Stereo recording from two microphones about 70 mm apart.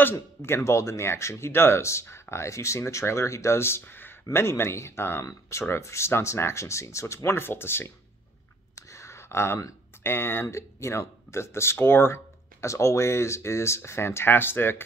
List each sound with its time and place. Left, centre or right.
0.1 s speech: left
8.7 s a sound: left
10.0 s speech: left